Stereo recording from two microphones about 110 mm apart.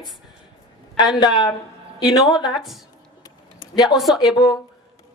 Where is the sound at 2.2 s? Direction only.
Centre (ahead or behind).